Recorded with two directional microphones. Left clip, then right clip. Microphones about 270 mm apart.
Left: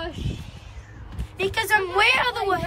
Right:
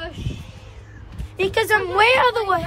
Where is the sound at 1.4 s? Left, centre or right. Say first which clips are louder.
Right 3 dB; centre.